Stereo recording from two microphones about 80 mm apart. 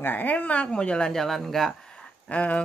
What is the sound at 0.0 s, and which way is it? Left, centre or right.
Speech, left.